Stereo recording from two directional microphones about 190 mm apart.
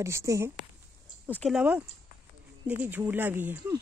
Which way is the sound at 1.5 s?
10° right (ahead or behind).